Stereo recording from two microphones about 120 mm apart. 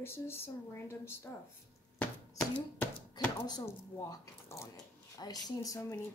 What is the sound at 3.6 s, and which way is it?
Speech, 25° left (ahead or behind).